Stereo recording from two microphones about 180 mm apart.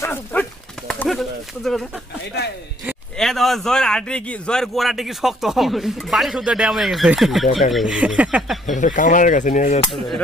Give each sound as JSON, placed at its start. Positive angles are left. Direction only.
{"t": 0.0, "sound": "dog", "side_deg": 10}
{"t": 3.2, "sound": "a man's voice", "side_deg": 0}
{"t": 8.7, "sound": "speech", "side_deg": 45}